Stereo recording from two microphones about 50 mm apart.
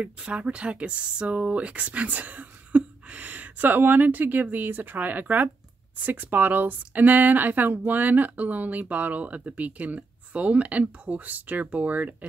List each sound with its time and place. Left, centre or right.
0.0 s speech: right